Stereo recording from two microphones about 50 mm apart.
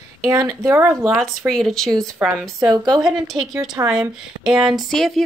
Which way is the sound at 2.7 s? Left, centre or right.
Centre.